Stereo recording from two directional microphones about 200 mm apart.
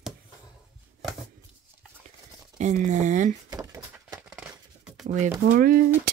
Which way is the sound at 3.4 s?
15° right (ahead or behind).